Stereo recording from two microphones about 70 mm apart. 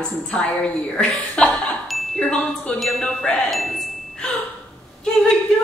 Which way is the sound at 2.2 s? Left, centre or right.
Centre.